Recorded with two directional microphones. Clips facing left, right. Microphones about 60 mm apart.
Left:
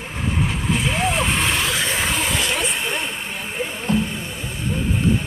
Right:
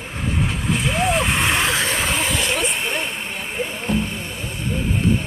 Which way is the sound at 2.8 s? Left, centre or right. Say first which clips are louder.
Right 1 dB; right.